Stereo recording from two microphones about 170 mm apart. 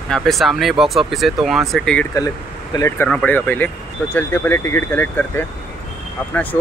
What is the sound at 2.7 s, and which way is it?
Speech, 15° left (ahead or behind).